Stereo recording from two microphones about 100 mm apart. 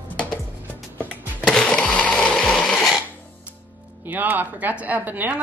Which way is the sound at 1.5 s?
5° left (ahead or behind).